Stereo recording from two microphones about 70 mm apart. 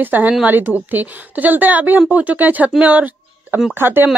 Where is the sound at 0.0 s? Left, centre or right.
Right.